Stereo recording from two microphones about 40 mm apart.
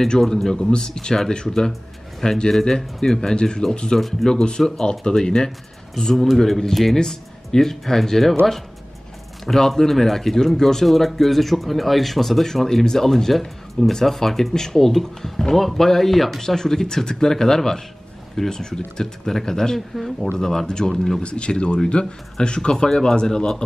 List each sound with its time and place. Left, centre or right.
0.4 s speech: centre
3.9 s speech: centre
6.1 s speech: centre
9.5 s speech: centre
21.2 s speech: left